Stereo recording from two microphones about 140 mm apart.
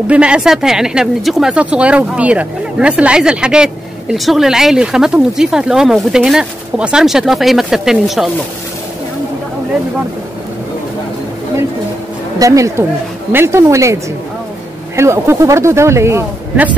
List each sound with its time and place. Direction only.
0.1 s speech: 5° right (ahead or behind)
12.4 s speech: 25° right (ahead or behind)
15.0 s speech: 20° right (ahead or behind)